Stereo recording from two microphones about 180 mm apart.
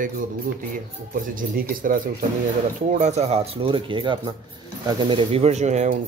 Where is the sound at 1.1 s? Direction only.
50° right (ahead or behind).